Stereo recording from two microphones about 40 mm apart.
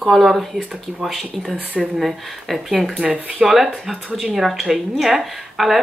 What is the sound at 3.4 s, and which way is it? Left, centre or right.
A woman's voice, centre.